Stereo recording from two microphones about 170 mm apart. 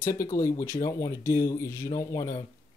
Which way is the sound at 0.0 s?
20° left (ahead or behind).